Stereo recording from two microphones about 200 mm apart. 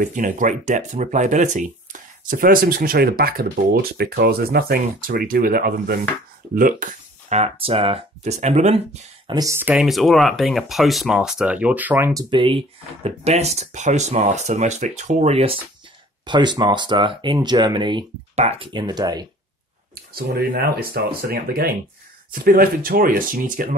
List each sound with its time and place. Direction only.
0.0 s speech: 40° right (ahead or behind)
9.3 s speech: 15° right (ahead or behind)
20.2 s speech: 50° right (ahead or behind)